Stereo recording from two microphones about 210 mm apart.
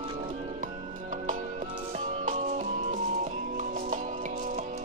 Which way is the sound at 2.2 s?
35° right (ahead or behind).